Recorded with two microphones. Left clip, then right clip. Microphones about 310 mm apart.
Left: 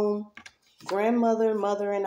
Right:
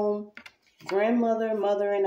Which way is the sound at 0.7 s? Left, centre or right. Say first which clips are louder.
Right 1 dB; left.